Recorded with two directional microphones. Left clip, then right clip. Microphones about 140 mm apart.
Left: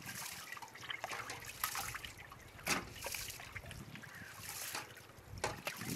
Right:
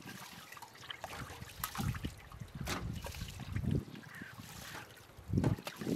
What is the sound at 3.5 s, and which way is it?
Boat, centre (ahead or behind).